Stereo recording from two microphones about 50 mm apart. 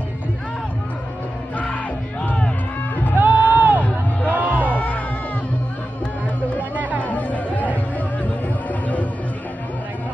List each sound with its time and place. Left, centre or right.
3.2 s a sound: right
4.3 s music: right
4.6 s music: left
7.0 s music: left